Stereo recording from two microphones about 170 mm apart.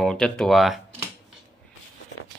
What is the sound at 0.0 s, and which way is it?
Speech, 5° left (ahead or behind).